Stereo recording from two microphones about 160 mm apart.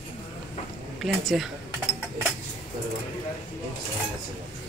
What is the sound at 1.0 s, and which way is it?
Speech, centre (ahead or behind).